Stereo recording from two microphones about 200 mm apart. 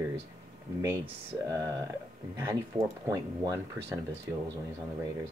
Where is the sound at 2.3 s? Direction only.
15° right (ahead or behind).